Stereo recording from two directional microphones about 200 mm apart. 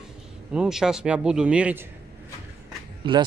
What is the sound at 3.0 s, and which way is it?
Speech, 25° right (ahead or behind).